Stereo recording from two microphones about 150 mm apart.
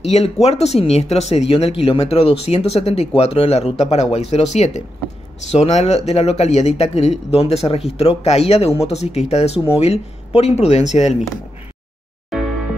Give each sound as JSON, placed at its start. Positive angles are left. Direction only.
{"t": 0.0, "sound": "speech", "side_deg": 45}